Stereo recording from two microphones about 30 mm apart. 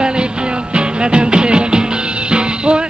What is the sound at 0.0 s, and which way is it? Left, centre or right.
Music, right.